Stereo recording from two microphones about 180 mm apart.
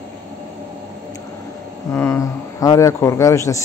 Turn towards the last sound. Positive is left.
turn(degrees=15)  # may be behind; listen again after turning